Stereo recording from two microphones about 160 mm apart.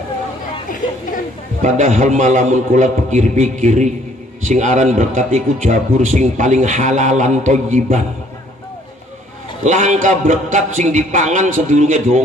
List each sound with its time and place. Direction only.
1.6 s a man's voice: 50° right (ahead or behind)
9.6 s a man's voice: 50° right (ahead or behind)